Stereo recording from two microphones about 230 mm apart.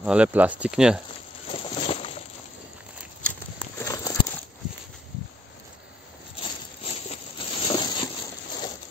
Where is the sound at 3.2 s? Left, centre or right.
Centre.